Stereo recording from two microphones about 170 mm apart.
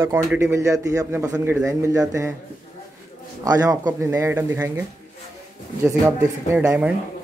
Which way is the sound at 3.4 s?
20° right (ahead or behind).